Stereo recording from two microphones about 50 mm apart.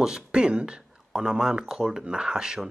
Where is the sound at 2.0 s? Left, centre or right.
Centre.